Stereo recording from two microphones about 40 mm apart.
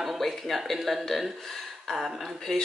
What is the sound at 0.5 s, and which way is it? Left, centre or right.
Speech, centre.